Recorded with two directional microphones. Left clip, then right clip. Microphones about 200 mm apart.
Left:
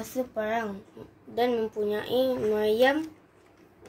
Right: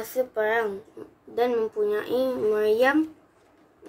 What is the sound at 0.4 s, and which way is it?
Speech, 15° right (ahead or behind).